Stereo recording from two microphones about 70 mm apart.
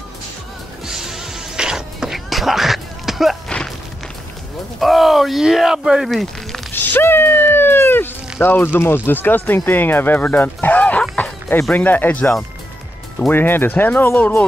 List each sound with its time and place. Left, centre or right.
0.8 s music: centre
3.4 s a sound: centre
4.7 s speech: centre
6.7 s cat: left
8.7 s speech: left